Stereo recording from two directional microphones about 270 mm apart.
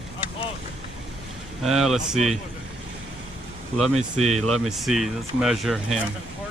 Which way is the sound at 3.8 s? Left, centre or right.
Centre.